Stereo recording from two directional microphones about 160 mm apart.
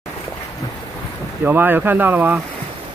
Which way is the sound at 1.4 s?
10° right (ahead or behind).